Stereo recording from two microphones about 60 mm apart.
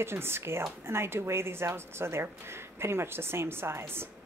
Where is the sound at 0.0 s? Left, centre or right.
Right.